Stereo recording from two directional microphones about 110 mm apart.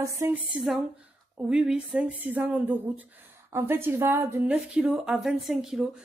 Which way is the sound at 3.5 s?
20° right (ahead or behind).